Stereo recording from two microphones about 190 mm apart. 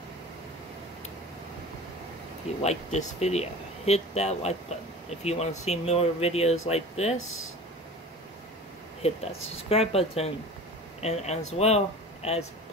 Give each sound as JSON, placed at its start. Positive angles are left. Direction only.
{"t": 2.6, "sound": "speech", "side_deg": 35}
{"t": 9.0, "sound": "speech", "side_deg": 30}